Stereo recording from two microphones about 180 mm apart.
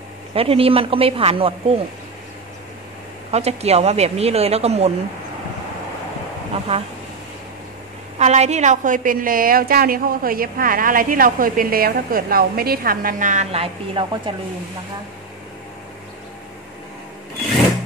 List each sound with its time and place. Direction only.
0.3 s speech: 30° right (ahead or behind)
3.3 s speech: 35° right (ahead or behind)
6.7 s speech: 35° right (ahead or behind)
8.2 s a woman's voice: 40° right (ahead or behind)